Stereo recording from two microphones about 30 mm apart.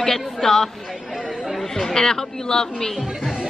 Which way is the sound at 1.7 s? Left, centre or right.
Centre.